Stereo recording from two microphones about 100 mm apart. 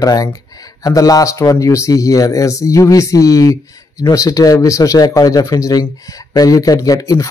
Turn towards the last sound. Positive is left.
turn(degrees=35)  # may be behind; listen again after turning